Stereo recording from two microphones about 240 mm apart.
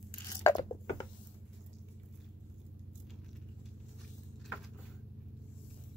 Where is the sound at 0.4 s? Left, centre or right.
Centre.